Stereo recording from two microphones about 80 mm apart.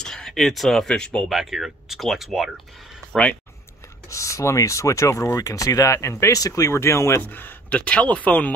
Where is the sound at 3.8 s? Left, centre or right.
Left.